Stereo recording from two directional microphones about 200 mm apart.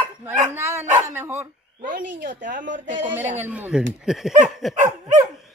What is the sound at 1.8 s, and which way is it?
Speech, 40° right (ahead or behind).